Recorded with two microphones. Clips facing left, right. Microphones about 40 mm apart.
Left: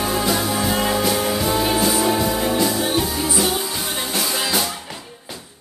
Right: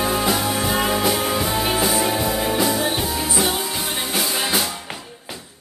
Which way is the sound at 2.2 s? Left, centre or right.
Centre.